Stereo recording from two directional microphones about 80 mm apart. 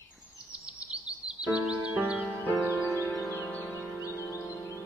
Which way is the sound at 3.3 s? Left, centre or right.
Centre.